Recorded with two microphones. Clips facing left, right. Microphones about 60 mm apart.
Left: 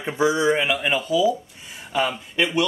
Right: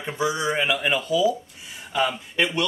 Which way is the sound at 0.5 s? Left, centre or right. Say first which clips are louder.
Left 2 dB; centre.